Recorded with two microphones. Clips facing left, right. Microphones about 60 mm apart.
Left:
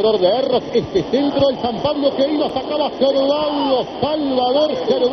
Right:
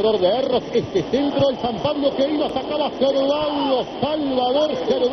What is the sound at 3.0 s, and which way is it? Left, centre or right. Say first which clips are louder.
Speech: left 3 dB; left.